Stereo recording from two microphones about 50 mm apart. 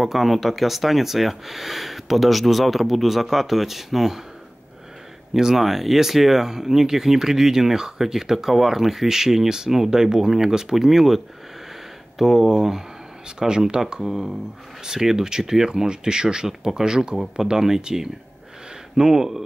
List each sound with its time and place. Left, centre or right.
0.0 s speech: centre
5.3 s speech: centre